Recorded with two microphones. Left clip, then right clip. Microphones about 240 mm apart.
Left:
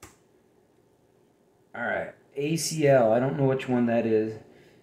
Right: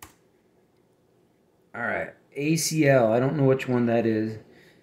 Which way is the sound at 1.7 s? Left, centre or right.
Right.